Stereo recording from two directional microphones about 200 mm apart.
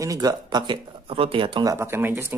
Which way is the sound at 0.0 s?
20° right (ahead or behind).